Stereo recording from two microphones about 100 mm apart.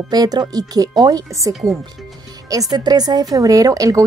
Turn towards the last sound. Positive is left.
turn(degrees=-35)  # may be behind; listen again after turning